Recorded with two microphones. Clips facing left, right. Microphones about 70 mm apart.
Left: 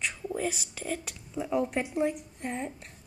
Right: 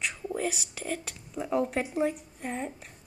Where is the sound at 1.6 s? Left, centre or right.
Centre.